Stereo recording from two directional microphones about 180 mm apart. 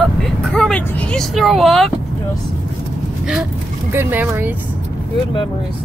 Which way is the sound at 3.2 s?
5° right (ahead or behind).